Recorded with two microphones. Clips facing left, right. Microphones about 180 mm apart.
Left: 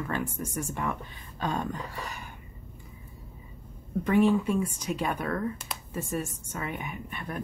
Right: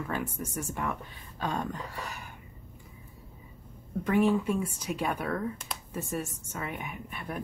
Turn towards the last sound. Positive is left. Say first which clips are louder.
# left 1 dB
turn(degrees=-5)  # may be behind; listen again after turning